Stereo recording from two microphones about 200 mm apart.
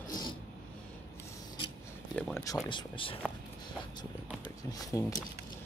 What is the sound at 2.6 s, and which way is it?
Speech, 25° left (ahead or behind).